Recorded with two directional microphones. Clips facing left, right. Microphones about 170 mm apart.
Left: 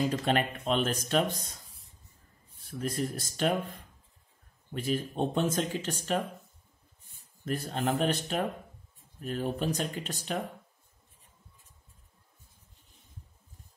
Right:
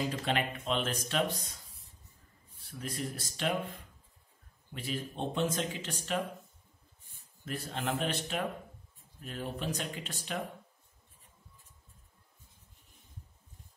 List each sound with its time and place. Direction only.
0.2 s speech: 45° left (ahead or behind)
2.8 s speech: 45° left (ahead or behind)
4.7 s speech: 45° left (ahead or behind)
7.4 s speech: 40° left (ahead or behind)